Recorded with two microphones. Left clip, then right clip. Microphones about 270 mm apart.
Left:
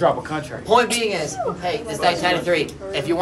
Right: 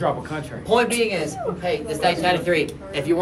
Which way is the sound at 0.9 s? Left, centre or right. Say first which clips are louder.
Even; centre.